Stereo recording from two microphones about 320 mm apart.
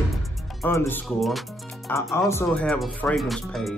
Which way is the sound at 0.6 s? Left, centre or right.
Centre.